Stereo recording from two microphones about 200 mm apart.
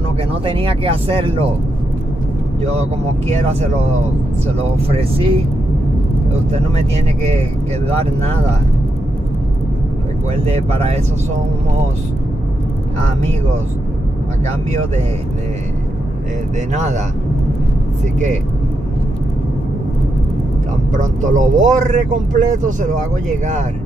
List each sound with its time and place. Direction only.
0.5 s speech: 25° right (ahead or behind)
4.6 s speech: 30° right (ahead or behind)
10.4 s speech: 30° right (ahead or behind)
16.7 s speech: 35° right (ahead or behind)
20.9 s speech: 40° right (ahead or behind)